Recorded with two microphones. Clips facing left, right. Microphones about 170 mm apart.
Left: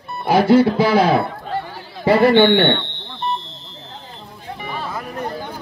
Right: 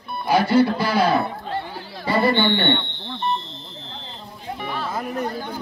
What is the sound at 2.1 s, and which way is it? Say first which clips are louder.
Speech: left 7 dB; 90° left.